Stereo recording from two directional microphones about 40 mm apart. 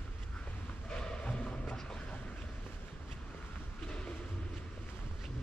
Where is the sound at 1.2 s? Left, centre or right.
Left.